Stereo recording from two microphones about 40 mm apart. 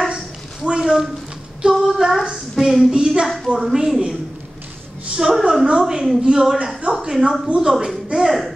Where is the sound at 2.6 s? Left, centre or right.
Centre.